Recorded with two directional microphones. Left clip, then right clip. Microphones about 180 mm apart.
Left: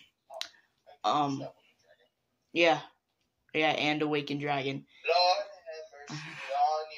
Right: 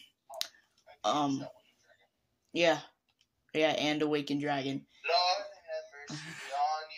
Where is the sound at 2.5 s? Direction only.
35° right (ahead or behind).